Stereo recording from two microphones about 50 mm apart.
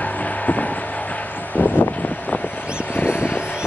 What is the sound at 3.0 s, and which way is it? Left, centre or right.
Vehicle, left.